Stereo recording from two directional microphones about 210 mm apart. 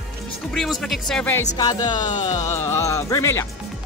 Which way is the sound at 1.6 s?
20° left (ahead or behind).